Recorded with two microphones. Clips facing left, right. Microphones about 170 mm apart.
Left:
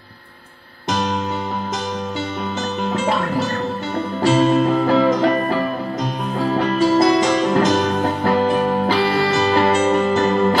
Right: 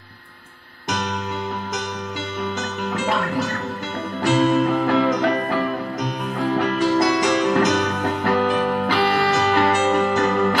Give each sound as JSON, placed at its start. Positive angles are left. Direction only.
{"t": 2.9, "sound": "music", "side_deg": 30}
{"t": 6.5, "sound": "music", "side_deg": 30}